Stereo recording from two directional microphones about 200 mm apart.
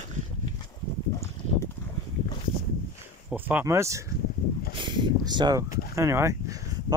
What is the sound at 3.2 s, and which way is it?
Speech, 10° right (ahead or behind).